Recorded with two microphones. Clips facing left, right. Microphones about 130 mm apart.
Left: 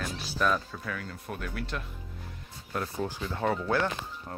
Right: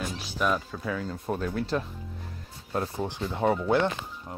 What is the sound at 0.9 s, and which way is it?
Speech, 30° right (ahead or behind).